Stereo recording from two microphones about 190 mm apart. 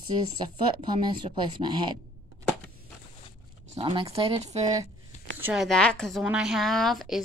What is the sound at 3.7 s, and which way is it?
Speech, 25° right (ahead or behind).